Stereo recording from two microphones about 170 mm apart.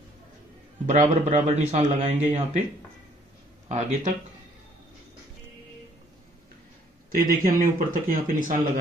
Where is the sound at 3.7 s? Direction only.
40° right (ahead or behind).